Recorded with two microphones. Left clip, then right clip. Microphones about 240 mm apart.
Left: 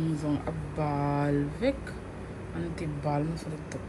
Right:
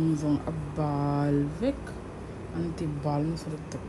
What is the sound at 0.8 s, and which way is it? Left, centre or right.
Mantra, centre.